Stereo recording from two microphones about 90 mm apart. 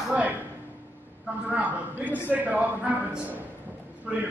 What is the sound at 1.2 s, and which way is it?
A man's voice, 15° right (ahead or behind).